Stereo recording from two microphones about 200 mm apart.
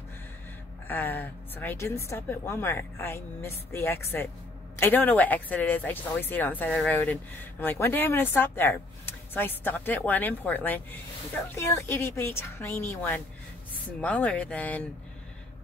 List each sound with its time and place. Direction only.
0.8 s speech: 10° left (ahead or behind)